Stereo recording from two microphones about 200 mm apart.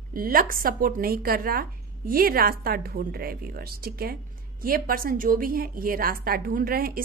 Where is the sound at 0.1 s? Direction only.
45° right (ahead or behind).